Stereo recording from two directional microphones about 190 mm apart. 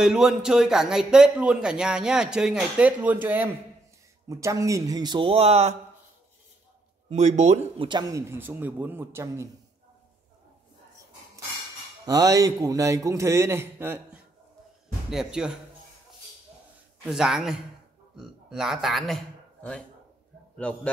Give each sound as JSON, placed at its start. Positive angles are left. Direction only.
{"t": 0.0, "sound": "speech", "side_deg": -5}
{"t": 7.1, "sound": "speech", "side_deg": -35}
{"t": 7.9, "sound": "a man's voice", "side_deg": -20}
{"t": 12.1, "sound": "a man's voice", "side_deg": -20}
{"t": 17.0, "sound": "a man's voice", "side_deg": -5}